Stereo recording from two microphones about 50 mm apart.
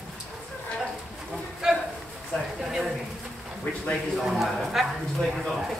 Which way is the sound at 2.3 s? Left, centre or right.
Centre.